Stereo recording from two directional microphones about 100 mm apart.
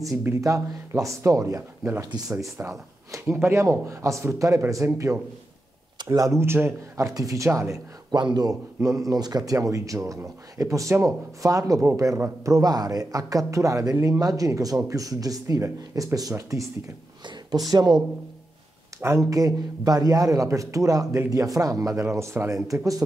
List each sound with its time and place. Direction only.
0.2 s a man's voice: 30° right (ahead or behind)
8.1 s speech: 45° right (ahead or behind)
18.9 s speech: 25° right (ahead or behind)